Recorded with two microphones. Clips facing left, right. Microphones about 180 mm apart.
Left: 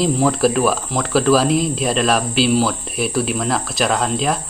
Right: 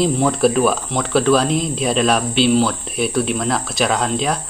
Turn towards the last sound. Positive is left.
turn(degrees=0)  # may be behind; listen again after turning